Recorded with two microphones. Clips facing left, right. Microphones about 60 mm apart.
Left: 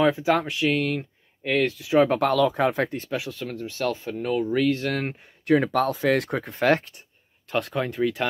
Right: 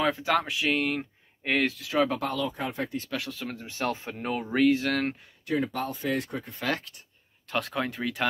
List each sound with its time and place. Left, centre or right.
0.0 s speech: centre
0.4 s speech: centre
2.1 s speech: left
3.2 s speech: centre
3.6 s speech: right
4.6 s speech: centre
4.8 s speech: centre
5.4 s speech: left
7.5 s speech: centre